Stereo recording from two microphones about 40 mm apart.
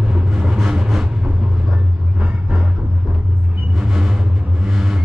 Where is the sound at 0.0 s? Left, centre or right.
Centre.